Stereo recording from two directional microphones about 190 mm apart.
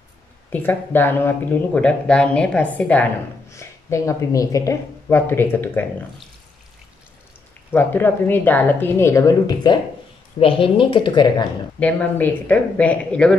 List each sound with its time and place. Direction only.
0.5 s speech: 10° left (ahead or behind)
7.7 s a woman's voice: 10° left (ahead or behind)
11.8 s speech: 10° left (ahead or behind)